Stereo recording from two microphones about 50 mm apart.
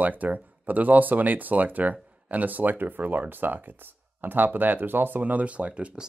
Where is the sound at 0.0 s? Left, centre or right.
Right.